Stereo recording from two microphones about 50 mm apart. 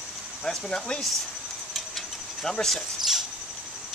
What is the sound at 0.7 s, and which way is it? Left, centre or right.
Speech, centre.